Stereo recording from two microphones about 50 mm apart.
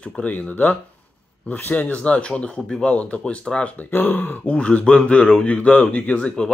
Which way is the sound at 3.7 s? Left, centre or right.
Left.